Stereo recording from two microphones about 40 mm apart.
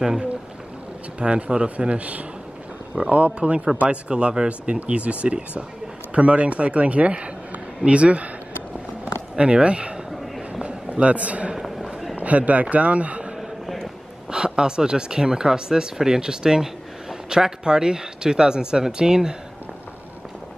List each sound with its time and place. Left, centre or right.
1.2 s a man's voice: right
9.4 s speech: right
10.6 s a sound: right
11.5 s a sound: centre
12.2 s speech: right
14.3 s speech: right